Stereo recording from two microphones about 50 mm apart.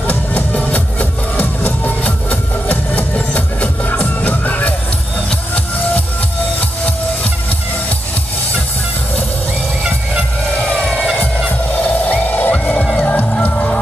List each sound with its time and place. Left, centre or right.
0.0 s music: left
10.6 s vehicle: left
13.1 s music: left